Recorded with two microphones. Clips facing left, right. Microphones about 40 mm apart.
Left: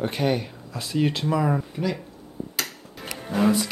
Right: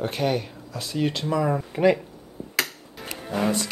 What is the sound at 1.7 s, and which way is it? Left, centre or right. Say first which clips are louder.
Speech: right 8 dB; right.